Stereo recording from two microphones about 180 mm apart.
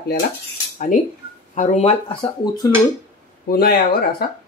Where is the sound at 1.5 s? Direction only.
40° left (ahead or behind).